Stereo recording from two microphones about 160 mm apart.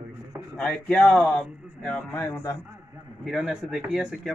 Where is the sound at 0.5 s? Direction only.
5° left (ahead or behind).